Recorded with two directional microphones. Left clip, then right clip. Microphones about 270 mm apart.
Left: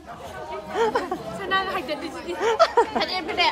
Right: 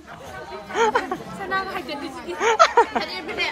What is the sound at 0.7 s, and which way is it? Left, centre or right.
Chatter, centre.